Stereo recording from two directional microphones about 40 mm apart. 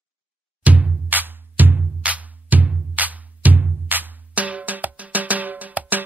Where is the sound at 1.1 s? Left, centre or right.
Right.